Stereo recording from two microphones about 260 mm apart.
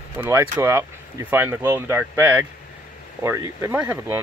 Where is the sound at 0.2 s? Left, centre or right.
Centre.